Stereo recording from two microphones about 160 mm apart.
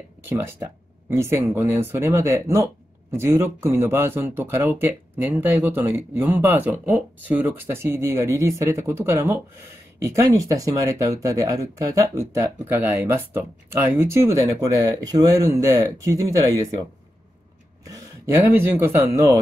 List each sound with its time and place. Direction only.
0.2 s speech: 15° right (ahead or behind)
17.8 s speech: 15° right (ahead or behind)